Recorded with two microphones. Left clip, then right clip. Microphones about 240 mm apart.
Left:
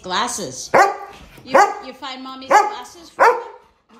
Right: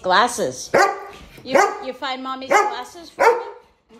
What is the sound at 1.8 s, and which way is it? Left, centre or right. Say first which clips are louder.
Speech: right 5 dB; centre.